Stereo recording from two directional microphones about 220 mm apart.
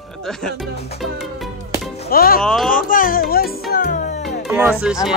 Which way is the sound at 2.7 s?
40° left (ahead or behind).